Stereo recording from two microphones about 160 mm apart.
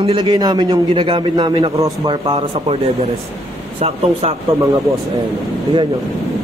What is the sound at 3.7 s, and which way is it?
Speech, 40° right (ahead or behind).